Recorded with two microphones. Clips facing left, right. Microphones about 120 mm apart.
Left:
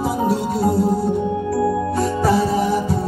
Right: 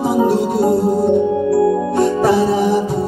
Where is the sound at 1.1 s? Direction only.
Centre (ahead or behind).